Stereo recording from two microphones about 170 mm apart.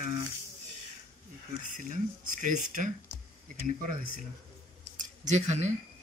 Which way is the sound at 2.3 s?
50° right (ahead or behind).